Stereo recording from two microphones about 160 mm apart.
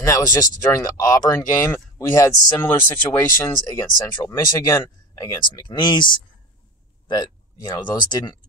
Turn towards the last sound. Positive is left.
turn(degrees=25)  # may be behind; listen again after turning